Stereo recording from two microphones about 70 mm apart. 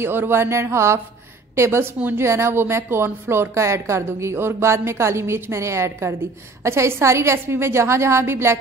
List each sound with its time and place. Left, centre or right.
0.0 s a woman's voice: right